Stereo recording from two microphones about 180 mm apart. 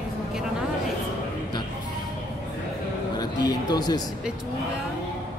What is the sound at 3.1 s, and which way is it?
Speech, 25° left (ahead or behind).